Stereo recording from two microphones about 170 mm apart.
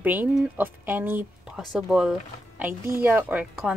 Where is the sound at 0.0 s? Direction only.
10° right (ahead or behind).